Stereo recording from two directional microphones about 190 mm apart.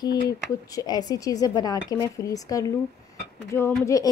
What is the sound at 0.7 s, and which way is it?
Speech, 20° left (ahead or behind).